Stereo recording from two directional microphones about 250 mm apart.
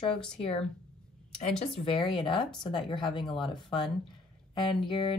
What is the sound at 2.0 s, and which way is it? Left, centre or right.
Speech, centre.